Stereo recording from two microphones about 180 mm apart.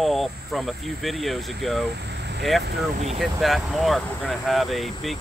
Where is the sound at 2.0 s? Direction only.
70° right (ahead or behind).